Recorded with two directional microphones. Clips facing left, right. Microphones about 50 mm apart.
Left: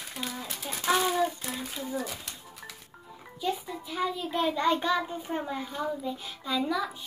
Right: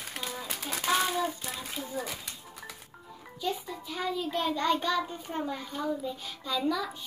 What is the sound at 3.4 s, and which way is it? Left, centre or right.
A child's voice, centre.